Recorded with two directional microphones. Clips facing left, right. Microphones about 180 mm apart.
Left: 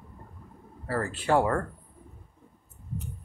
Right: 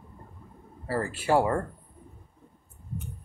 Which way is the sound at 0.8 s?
10° right (ahead or behind).